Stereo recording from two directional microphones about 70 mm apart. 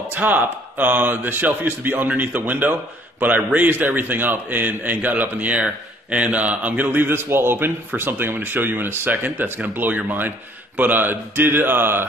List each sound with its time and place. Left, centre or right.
0.1 s a man's voice: right